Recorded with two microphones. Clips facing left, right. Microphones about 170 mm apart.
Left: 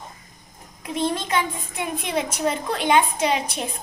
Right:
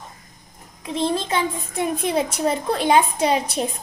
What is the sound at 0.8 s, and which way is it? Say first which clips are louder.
A child's voice: right 2 dB; 30° right (ahead or behind).